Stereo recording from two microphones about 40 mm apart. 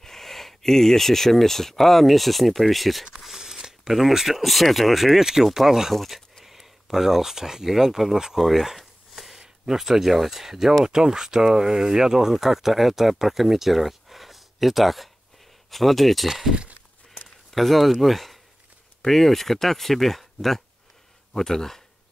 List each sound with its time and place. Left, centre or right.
0.0 s speech: centre
3.3 s speech: centre
8.5 s a sound: centre
9.4 s speech: centre
16.5 s a sound: right
17.5 s speech: centre